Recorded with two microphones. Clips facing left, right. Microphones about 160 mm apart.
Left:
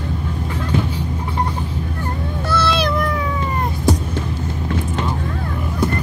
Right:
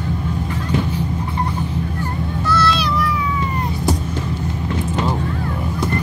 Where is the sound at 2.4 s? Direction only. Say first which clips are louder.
Even; 55° left (ahead or behind).